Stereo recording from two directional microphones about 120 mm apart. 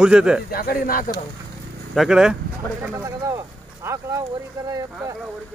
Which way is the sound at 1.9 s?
5° right (ahead or behind).